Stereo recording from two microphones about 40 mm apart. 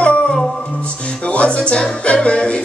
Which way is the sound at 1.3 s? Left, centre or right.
Left.